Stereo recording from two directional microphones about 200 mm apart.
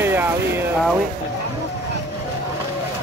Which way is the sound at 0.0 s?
10° right (ahead or behind).